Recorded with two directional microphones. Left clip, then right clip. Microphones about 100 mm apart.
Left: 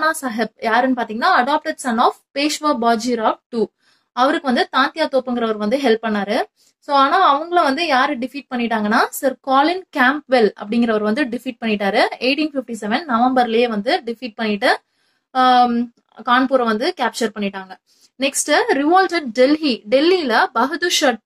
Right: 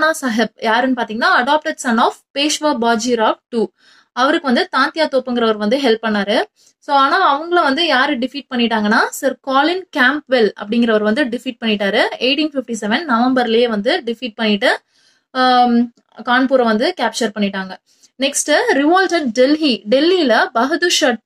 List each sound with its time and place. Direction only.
0.0 s speech: 30° right (ahead or behind)